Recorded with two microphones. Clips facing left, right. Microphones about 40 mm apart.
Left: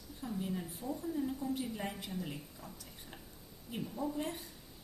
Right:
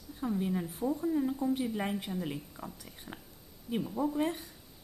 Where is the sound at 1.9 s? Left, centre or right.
Right.